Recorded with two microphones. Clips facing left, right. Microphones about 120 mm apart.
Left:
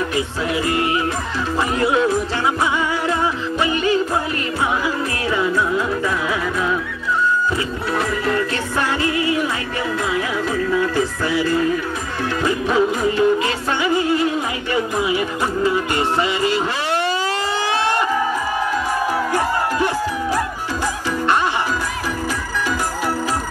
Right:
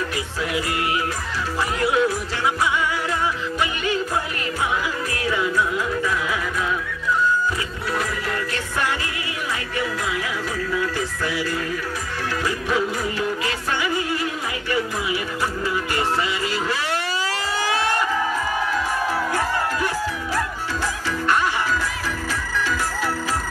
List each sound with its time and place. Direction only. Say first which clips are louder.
0.7 s music: left 4 dB; 25° left (ahead or behind)
5.3 s music: left 4 dB; 30° left (ahead or behind)
8.3 s music: left 6 dB; 30° left (ahead or behind)